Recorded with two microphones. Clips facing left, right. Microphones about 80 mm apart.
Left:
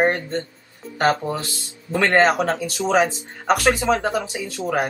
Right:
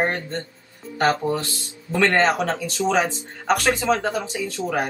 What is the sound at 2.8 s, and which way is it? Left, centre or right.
Speech, centre.